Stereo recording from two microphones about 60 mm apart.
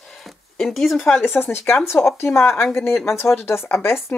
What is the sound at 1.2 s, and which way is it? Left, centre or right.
Speech, left.